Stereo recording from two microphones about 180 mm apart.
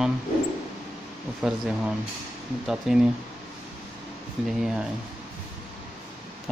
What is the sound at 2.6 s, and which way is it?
Speech, 5° right (ahead or behind).